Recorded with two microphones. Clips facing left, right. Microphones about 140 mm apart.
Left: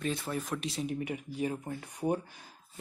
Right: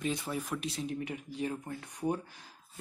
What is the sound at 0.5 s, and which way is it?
Speech, centre (ahead or behind).